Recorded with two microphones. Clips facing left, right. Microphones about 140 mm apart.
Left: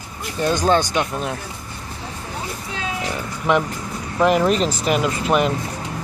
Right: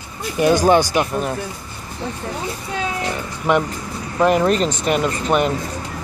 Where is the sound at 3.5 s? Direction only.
Centre (ahead or behind).